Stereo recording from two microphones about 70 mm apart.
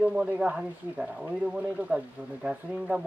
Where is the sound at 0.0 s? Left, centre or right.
Centre.